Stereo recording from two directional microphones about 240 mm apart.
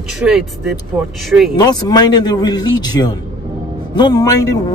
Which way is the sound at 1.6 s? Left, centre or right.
Centre.